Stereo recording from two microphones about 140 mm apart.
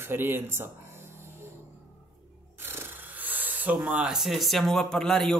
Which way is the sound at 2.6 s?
15° right (ahead or behind).